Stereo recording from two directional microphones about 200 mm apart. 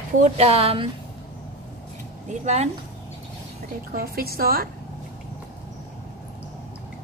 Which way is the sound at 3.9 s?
50° right (ahead or behind).